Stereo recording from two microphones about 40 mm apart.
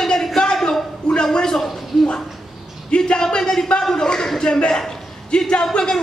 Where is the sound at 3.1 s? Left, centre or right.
Centre.